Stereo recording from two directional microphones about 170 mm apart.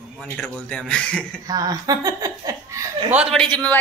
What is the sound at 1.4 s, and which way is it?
Speech, 20° right (ahead or behind).